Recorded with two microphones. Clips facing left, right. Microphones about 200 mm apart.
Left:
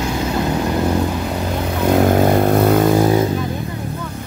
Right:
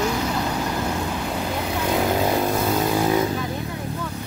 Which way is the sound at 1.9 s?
55° left (ahead or behind).